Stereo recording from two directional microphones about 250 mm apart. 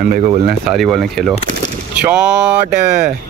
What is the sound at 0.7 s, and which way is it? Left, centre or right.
Speech, centre.